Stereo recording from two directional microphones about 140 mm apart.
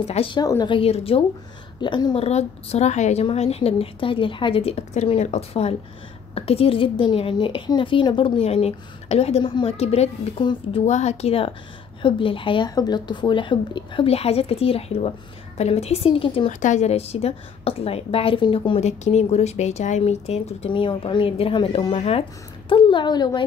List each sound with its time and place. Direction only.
0.0 s a woman's voice: 45° left (ahead or behind)
0.4 s a woman's voice: 30° left (ahead or behind)
0.7 s a woman's voice: 45° left (ahead or behind)
1.8 s speech: 30° left (ahead or behind)
2.1 s a woman's voice: 50° left (ahead or behind)
10.4 s speech: 35° left (ahead or behind)
10.9 s a woman's voice: 55° left (ahead or behind)
16.5 s a woman's voice: 60° left (ahead or behind); by 18.8 s 35° left (ahead or behind)
18.8 s a woman's voice: 50° left (ahead or behind)
22.7 s speech: 35° left (ahead or behind)